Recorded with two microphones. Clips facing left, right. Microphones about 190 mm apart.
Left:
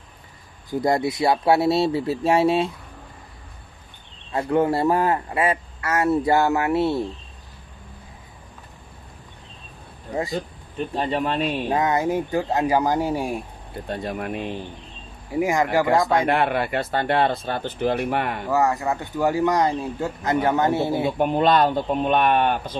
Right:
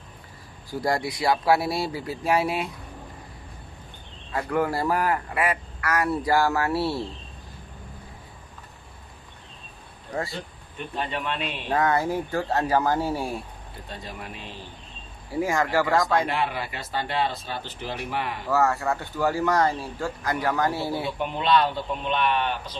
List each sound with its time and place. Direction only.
0.7 s a man's voice: 20° left (ahead or behind)
4.3 s a man's voice: 25° left (ahead or behind)
10.3 s speech: 35° left (ahead or behind)
11.7 s speech: 20° left (ahead or behind)
13.8 s speech: 55° left (ahead or behind)
15.3 s speech: 15° left (ahead or behind)
16.3 s speech: 60° left (ahead or behind)
18.5 s speech: 15° left (ahead or behind)
21.2 s speech: 45° left (ahead or behind)